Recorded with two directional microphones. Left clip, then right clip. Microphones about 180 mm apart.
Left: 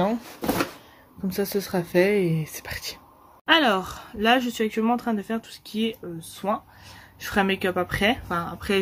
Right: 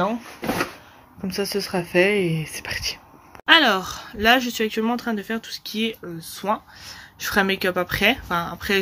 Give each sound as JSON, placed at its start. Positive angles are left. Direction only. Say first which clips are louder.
{"t": 1.2, "sound": "speech", "louder": "right 2 dB", "side_deg": 20}